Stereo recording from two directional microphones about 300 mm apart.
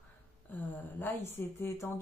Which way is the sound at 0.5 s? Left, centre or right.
Centre.